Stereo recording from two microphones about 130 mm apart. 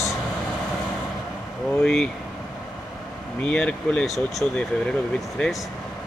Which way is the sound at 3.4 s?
10° left (ahead or behind).